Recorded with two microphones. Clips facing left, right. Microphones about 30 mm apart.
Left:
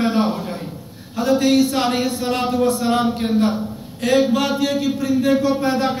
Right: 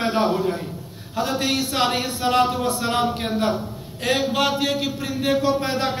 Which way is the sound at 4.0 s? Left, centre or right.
Right.